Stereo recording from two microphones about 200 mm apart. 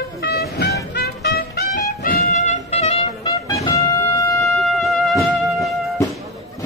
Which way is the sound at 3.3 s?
15° left (ahead or behind).